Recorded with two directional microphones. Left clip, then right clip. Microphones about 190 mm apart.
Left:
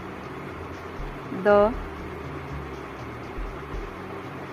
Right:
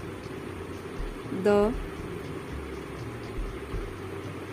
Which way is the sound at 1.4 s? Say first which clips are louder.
Left 5 dB; 25° right (ahead or behind).